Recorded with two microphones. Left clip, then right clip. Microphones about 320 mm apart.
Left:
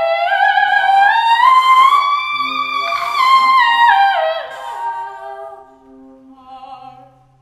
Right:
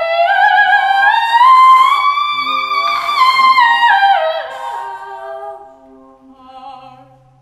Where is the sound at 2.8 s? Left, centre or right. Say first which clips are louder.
Right 2 dB; centre.